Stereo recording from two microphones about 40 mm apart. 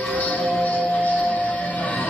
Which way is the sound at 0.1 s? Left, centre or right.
Left.